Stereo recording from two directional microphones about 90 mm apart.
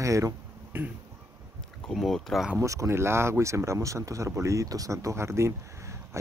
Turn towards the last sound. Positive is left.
turn(degrees=-30)  # may be behind; listen again after turning